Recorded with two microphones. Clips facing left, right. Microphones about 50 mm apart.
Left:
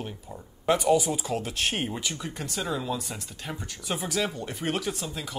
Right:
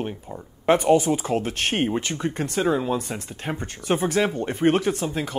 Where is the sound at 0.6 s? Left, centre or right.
Right.